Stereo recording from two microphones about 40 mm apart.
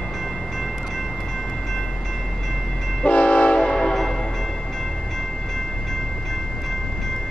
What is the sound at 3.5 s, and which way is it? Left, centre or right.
Train horn, centre.